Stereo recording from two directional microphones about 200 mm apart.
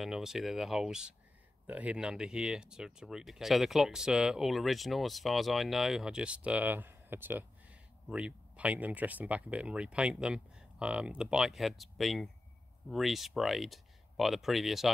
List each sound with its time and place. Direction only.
0.0 s speech: centre (ahead or behind)